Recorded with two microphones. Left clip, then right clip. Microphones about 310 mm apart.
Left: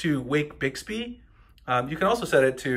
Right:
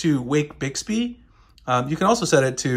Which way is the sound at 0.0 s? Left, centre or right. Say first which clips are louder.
Right 4 dB; centre.